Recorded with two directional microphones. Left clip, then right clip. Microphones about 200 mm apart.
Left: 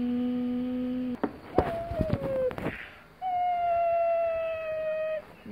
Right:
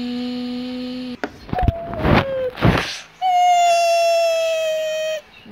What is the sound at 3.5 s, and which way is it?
Siren, 20° right (ahead or behind).